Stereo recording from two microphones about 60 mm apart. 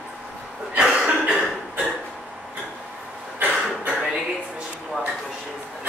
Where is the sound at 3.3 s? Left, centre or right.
Right.